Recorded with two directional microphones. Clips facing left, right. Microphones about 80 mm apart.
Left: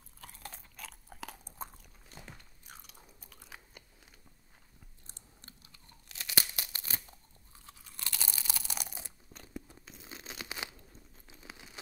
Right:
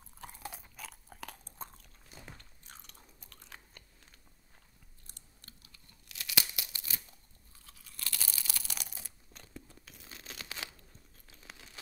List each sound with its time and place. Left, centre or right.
0.2 s chewing: centre
2.3 s biting: centre
5.0 s tearing: left
7.6 s crunch: left